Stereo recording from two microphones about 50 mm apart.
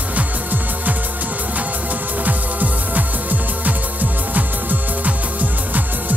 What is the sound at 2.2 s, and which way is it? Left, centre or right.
Music, right.